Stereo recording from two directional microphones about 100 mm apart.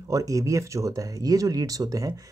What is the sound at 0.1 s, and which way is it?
Speech, 35° right (ahead or behind).